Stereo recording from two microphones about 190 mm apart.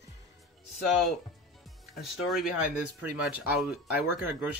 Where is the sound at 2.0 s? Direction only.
Centre (ahead or behind).